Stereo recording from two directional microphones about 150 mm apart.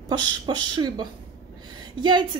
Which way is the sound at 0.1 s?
30° right (ahead or behind).